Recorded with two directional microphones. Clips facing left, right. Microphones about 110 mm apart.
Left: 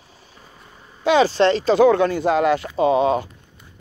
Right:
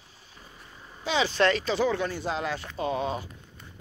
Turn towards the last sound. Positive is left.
turn(degrees=90)